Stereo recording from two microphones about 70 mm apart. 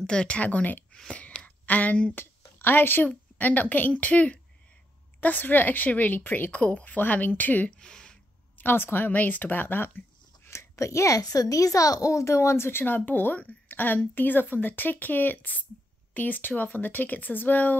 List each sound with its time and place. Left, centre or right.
0.0 s speech: centre
0.9 s a sound: centre
3.1 s speech: left
7.7 s speech: centre
8.5 s speech: left